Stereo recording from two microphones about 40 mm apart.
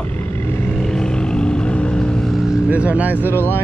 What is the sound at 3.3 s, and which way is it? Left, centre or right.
Speech, left.